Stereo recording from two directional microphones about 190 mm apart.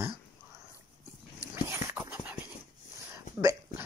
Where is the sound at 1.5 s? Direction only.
15° right (ahead or behind).